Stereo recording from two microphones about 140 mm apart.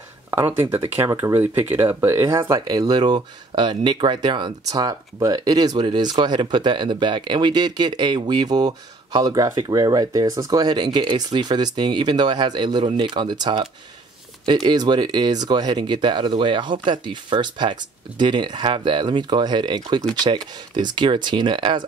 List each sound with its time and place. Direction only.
0.3 s speech: 15° right (ahead or behind); by 21.8 s 35° right (ahead or behind)